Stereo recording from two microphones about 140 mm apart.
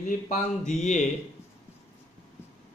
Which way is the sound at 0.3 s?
60° left (ahead or behind).